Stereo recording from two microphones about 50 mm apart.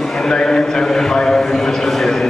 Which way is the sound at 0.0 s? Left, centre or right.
Centre.